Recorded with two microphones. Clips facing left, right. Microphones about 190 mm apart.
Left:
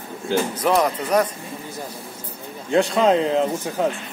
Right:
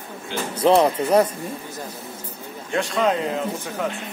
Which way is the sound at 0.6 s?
30° right (ahead or behind).